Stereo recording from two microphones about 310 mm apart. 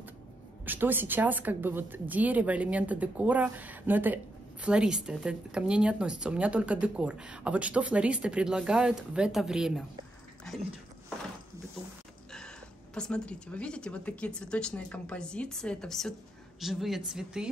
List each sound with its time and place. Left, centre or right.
0.7 s a woman's voice: centre
12.3 s a woman's voice: centre